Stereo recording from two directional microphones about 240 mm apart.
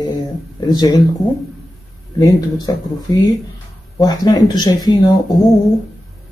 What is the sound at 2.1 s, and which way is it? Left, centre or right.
A man's voice, centre.